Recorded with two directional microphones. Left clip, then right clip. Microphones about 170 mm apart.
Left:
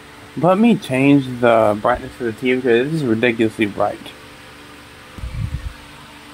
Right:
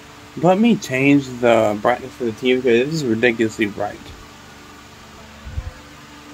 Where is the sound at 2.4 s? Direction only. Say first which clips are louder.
Even; centre (ahead or behind).